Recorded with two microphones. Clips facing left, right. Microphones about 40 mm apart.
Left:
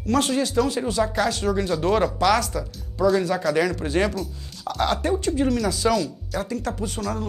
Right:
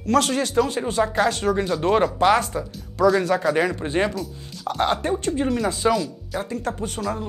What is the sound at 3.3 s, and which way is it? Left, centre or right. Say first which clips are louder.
Speech: right 1 dB; right.